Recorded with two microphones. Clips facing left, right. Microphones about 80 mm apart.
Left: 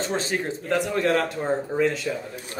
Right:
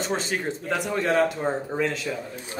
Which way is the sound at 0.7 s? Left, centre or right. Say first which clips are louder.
Left 2 dB; centre.